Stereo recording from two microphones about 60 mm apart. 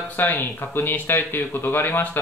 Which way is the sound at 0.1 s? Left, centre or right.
Left.